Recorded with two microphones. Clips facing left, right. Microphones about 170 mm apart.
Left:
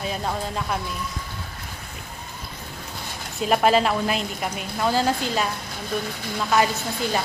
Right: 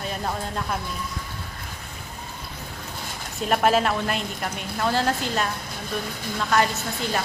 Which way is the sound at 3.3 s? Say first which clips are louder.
Left 2 dB; centre (ahead or behind).